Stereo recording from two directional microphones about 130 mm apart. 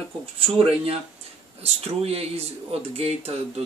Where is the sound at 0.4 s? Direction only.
50° right (ahead or behind).